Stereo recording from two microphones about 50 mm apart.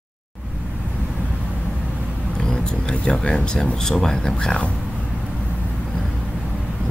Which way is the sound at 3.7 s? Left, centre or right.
Centre.